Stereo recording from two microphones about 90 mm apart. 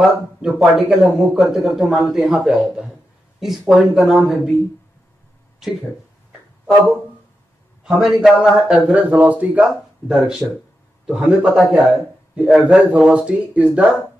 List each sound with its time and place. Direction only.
0.0 s a man's voice: 5° right (ahead or behind)
7.8 s a man's voice: centre (ahead or behind)
10.0 s a man's voice: 5° right (ahead or behind)
12.7 s a man's voice: 15° right (ahead or behind)